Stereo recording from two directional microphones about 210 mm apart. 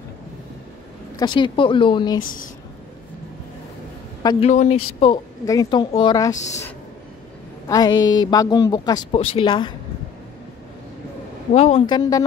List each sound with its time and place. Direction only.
1.1 s a woman's voice: 20° left (ahead or behind)
4.2 s speech: 20° left (ahead or behind)
4.5 s speech: 35° left (ahead or behind)
5.0 s a woman's voice: 20° left (ahead or behind)
7.6 s a woman's voice: 20° left (ahead or behind)
8.0 s mantra: 65° left (ahead or behind)
8.3 s a woman's voice: 20° left (ahead or behind)
11.5 s a woman's voice: 30° left (ahead or behind)